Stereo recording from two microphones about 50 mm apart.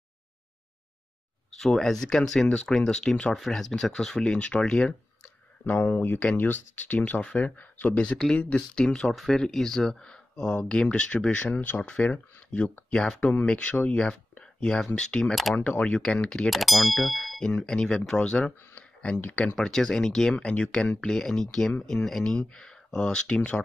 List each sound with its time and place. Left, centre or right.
1.6 s speech: centre
3.3 s speech: centre; by 4.6 s left
6.2 s speech: left
7.0 s speech: left
7.9 s speech: left
9.1 s speech: centre
14.4 s a sound: centre
15.0 s speech: centre
16.4 s speech: centre
17.4 s speech: centre
19.6 s speech: centre
20.4 s speech: centre